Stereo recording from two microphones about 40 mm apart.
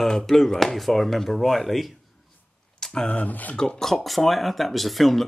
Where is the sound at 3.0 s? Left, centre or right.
Left.